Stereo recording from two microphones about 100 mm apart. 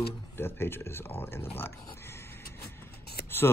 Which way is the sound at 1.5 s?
25° left (ahead or behind).